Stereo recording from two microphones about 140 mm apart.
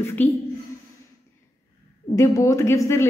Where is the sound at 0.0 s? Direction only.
15° left (ahead or behind).